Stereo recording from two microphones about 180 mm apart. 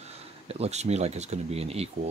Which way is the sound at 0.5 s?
35° right (ahead or behind).